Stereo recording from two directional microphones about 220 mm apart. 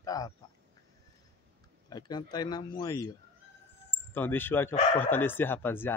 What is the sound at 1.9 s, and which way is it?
Speech, 20° left (ahead or behind).